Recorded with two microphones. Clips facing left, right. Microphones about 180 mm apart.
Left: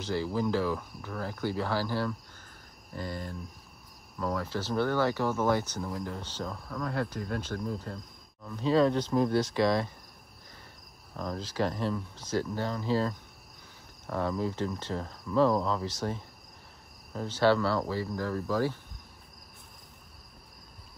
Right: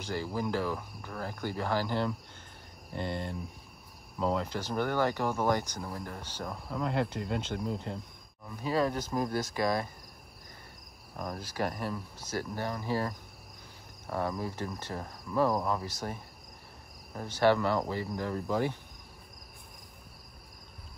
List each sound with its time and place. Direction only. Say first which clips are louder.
0.3 s speech: left 3 dB; 15° right (ahead or behind)
11.1 s speech: left 3 dB; 15° right (ahead or behind)